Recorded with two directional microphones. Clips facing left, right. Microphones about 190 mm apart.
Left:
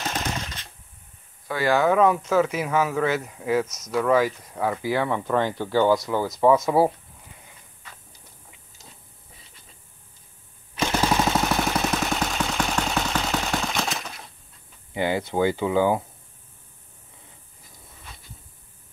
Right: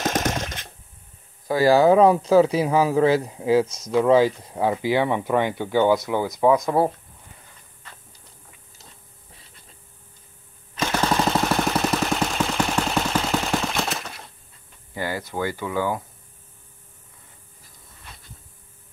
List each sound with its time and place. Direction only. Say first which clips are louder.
1.5 s speech: right 5 dB; 35° right (ahead or behind); by 6.2 s 15° right (ahead or behind)
6.5 s speech: left 2 dB; 5° left (ahead or behind)
10.8 s machine gun: even; 10° left (ahead or behind)
15.0 s speech: left 4 dB; 20° left (ahead or behind)